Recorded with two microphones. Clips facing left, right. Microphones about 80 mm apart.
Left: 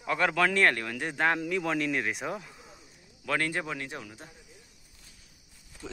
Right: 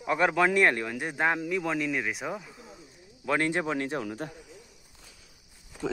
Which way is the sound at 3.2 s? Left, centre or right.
Right.